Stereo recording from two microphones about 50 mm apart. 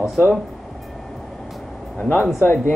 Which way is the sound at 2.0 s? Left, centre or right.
Left.